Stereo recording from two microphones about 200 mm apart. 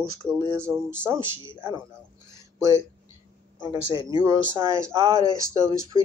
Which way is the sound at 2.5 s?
15° right (ahead or behind).